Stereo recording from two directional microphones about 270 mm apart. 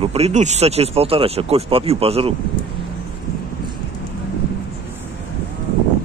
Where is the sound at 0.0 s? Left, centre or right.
Right.